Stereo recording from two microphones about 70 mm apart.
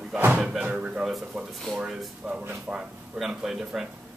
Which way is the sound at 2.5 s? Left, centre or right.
Centre.